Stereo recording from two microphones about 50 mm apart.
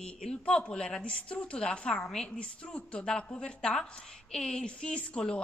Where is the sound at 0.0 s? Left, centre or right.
Centre.